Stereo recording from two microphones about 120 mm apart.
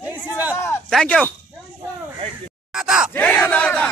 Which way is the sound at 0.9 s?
5° left (ahead or behind).